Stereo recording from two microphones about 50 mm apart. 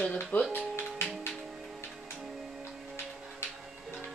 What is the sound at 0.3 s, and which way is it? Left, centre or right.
Speech, left.